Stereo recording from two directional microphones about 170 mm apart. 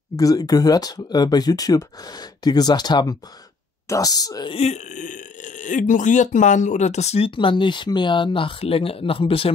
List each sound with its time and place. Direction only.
0.1 s speech: 20° left (ahead or behind)
4.6 s speech: 40° left (ahead or behind)